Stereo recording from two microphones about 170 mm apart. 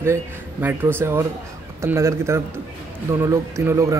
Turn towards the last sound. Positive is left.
turn(degrees=-15)  # may be behind; listen again after turning